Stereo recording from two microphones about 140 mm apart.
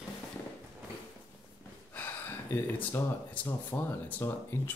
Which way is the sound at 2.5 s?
15° left (ahead or behind).